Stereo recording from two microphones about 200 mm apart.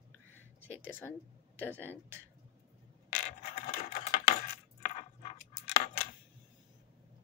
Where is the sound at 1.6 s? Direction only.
10° left (ahead or behind).